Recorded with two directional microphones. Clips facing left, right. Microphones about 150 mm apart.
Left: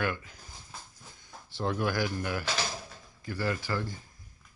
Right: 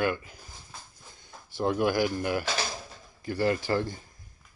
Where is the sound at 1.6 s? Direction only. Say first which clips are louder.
Right 5 dB; 15° right (ahead or behind).